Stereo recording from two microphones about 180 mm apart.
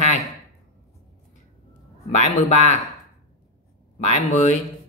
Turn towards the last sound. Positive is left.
turn(degrees=40)  # may be behind; listen again after turning